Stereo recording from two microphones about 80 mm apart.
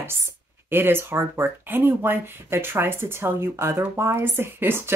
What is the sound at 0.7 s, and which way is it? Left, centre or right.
Speech, right.